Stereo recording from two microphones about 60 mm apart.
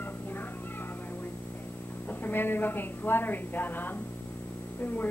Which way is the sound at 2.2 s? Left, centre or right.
Left.